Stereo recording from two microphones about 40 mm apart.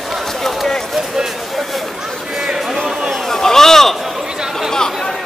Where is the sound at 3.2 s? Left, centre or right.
Centre.